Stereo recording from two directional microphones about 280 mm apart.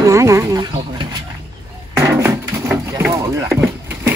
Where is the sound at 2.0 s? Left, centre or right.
Centre.